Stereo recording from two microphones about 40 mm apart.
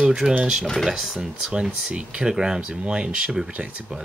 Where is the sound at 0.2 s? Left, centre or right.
Centre.